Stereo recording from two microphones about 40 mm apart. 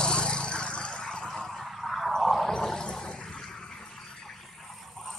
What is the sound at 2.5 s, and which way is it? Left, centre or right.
Toilet flush, centre.